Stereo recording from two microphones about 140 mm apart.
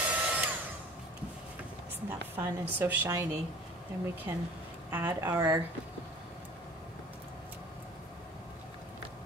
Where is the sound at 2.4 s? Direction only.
15° right (ahead or behind).